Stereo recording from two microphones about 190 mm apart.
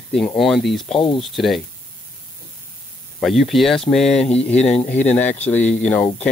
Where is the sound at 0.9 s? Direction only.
25° left (ahead or behind).